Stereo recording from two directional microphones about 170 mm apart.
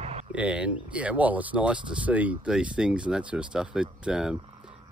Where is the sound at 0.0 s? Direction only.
40° right (ahead or behind).